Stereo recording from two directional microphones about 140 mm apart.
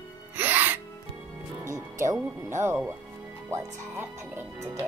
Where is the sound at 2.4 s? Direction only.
20° right (ahead or behind).